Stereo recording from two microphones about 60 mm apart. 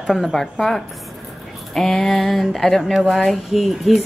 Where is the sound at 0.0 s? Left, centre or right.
Centre.